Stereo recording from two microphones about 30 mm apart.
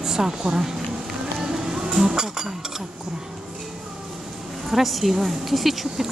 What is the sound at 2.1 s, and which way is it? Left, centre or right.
Speech, right.